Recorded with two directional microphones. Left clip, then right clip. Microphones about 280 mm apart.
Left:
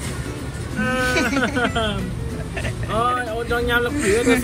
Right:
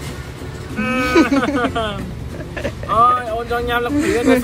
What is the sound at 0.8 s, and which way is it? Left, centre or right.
Speech, right.